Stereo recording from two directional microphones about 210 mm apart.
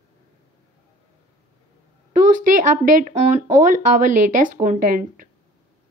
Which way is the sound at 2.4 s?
40° right (ahead or behind).